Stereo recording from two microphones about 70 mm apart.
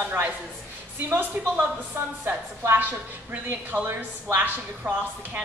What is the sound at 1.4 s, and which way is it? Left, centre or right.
A woman's voice, right.